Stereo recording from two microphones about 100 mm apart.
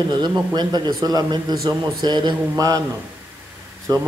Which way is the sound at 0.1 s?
45° right (ahead or behind).